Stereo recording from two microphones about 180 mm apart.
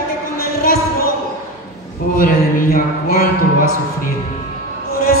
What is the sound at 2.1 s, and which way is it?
Speech, 50° left (ahead or behind).